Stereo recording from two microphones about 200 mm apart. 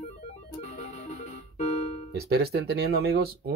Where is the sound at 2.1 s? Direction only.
55° right (ahead or behind).